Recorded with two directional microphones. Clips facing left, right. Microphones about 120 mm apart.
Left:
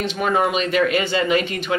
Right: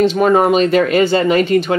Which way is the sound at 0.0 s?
40° right (ahead or behind).